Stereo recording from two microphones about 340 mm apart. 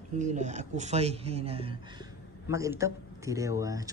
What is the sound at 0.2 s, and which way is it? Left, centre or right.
Speech, right.